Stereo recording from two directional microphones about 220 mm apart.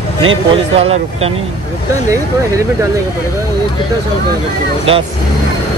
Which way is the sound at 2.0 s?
15° right (ahead or behind).